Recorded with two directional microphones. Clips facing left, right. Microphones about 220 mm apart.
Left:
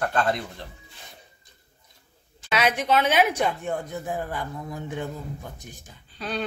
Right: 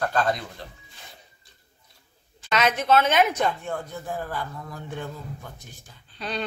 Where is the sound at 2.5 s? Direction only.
10° left (ahead or behind).